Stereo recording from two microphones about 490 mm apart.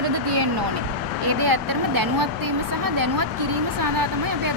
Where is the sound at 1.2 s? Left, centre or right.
Right.